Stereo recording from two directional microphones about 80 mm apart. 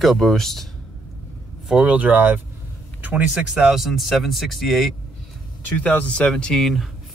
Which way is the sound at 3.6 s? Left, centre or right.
Centre.